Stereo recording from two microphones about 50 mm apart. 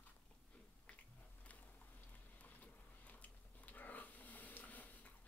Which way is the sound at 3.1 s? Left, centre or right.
Left.